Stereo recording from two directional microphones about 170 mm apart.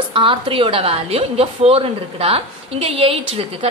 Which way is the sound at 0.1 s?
30° right (ahead or behind).